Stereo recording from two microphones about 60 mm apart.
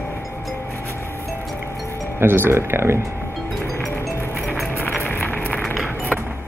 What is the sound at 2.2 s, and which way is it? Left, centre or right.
Speech, right.